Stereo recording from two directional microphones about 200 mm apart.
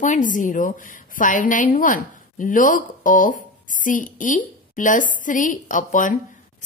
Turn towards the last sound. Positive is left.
turn(degrees=40)  # may be behind; listen again after turning